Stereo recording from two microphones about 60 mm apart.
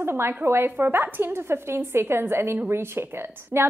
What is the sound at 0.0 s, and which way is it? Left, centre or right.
A woman's voice, right.